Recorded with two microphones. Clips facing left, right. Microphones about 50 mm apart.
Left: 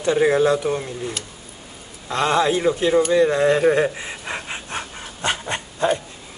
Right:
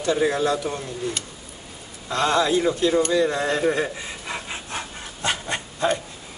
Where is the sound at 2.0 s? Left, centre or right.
Left.